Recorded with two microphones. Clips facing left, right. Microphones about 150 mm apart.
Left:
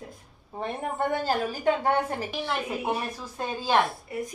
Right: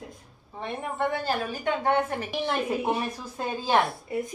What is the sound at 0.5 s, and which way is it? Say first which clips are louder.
Speech: left 1 dB; 45° left (ahead or behind).